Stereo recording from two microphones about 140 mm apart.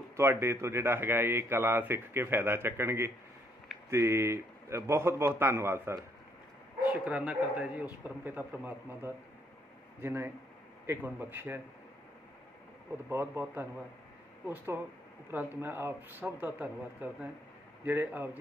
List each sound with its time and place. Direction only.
0.1 s a man's voice: 20° right (ahead or behind)
13.1 s a man's voice: 15° right (ahead or behind)